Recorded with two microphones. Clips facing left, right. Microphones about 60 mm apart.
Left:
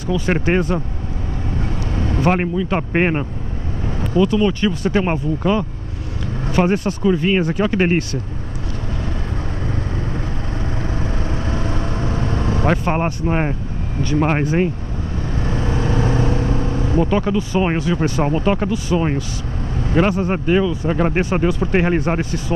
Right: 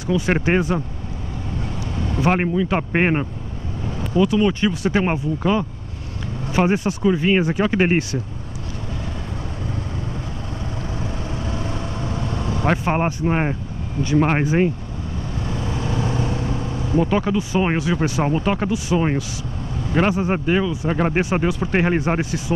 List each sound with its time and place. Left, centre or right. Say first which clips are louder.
0.0 s speech: even; centre
2.0 s vehicle: left 2 dB; left
2.2 s speech: even; centre
11.0 s vehicle: left 3 dB; left
12.6 s speech: even; centre
15.4 s vehicle: left 5 dB; left
17.0 s speech: left 2 dB; centre
18.7 s speech: left 1 dB; centre